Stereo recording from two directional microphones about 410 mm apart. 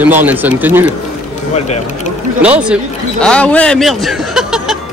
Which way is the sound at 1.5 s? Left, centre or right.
Centre.